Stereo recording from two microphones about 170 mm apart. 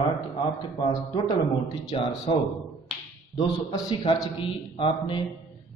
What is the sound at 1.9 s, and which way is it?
Speech, 30° left (ahead or behind).